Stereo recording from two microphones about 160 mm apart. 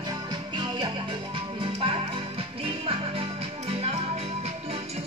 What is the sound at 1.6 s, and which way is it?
Music, 35° right (ahead or behind).